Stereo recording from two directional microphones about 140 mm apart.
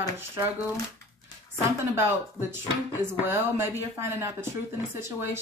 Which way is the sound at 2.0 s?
15° right (ahead or behind).